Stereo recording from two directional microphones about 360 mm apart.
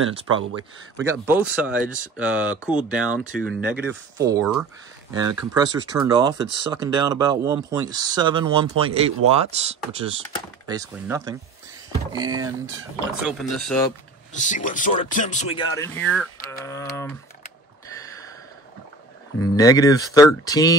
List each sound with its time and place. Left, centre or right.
0.0 s speech: right
1.0 s speech: centre
12.6 s speech: centre
14.3 s speech: left
19.4 s speech: centre